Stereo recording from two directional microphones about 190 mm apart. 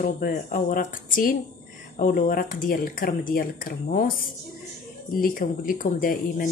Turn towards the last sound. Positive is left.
turn(degrees=45)  # may be behind; listen again after turning